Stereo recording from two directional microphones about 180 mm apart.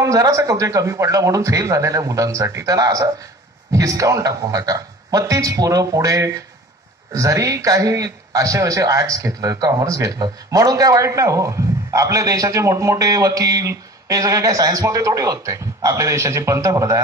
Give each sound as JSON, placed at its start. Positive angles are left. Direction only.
{"t": 0.0, "sound": "a man's voice", "side_deg": -20}